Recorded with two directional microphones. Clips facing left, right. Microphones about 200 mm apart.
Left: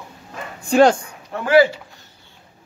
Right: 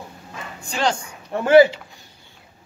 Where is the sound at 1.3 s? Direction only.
20° right (ahead or behind).